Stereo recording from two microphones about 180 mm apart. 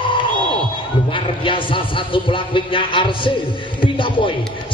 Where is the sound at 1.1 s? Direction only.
30° left (ahead or behind).